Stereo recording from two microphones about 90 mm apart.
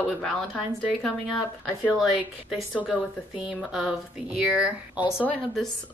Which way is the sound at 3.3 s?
10° right (ahead or behind).